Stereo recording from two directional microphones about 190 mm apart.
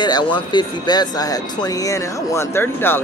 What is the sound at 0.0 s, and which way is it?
Speech, 25° left (ahead or behind).